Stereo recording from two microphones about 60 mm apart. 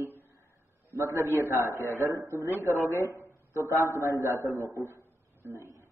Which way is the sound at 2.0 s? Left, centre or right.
Right.